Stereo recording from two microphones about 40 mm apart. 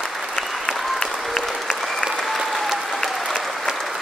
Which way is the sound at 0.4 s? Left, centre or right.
Centre.